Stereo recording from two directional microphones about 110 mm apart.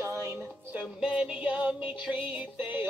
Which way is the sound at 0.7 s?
10° right (ahead or behind).